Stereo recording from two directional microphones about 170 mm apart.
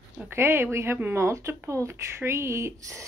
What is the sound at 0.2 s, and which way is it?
Speech, 15° right (ahead or behind).